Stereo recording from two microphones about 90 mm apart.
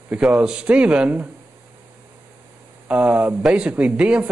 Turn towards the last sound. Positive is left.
turn(degrees=-10)  # may be behind; listen again after turning